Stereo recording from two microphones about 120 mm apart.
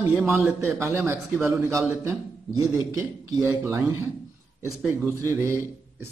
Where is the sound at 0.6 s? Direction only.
20° right (ahead or behind).